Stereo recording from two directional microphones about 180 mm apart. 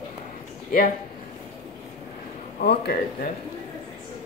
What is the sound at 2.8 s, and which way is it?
Speech, 55° left (ahead or behind).